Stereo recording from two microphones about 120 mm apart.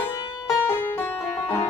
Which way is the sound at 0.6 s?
20° left (ahead or behind).